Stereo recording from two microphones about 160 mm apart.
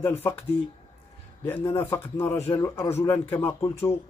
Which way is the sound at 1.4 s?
15° left (ahead or behind).